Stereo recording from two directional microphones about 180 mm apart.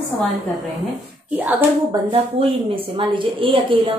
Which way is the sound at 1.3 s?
10° right (ahead or behind).